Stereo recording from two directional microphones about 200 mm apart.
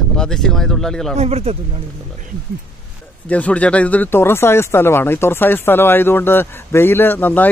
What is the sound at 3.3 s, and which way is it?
Speech, 5° left (ahead or behind).